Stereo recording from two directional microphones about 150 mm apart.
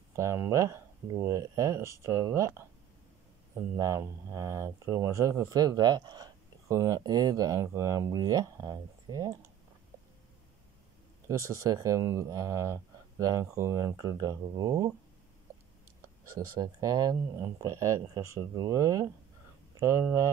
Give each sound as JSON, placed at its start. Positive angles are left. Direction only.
{"t": 0.1, "sound": "speech", "side_deg": -20}
{"t": 3.7, "sound": "speech", "side_deg": -20}
{"t": 11.2, "sound": "speech", "side_deg": -20}
{"t": 16.0, "sound": "speech", "side_deg": -20}